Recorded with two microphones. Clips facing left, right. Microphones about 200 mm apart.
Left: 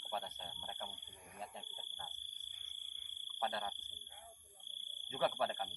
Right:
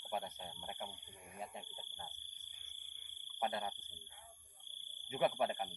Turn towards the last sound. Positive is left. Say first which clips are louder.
# right 2 dB
turn(degrees=-15)  # may be behind; listen again after turning